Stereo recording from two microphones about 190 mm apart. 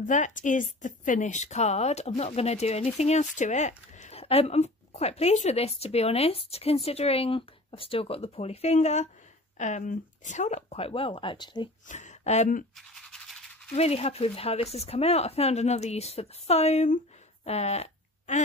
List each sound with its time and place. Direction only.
0.0 s speech: 40° left (ahead or behind); by 11.7 s 25° left (ahead or behind)
11.9 s speech: 40° left (ahead or behind)
12.7 s toothbrush: centre (ahead or behind)
13.7 s speech: 35° left (ahead or behind)
17.5 s fart: 35° left (ahead or behind)